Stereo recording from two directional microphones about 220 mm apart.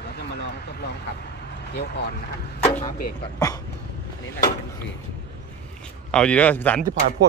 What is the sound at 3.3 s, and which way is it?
Speech, 15° left (ahead or behind).